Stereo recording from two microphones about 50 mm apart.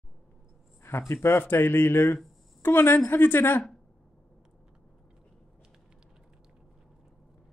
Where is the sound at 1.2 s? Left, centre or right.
Left.